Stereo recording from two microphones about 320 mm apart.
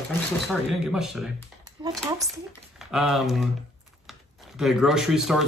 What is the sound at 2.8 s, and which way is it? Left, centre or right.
Speech, centre.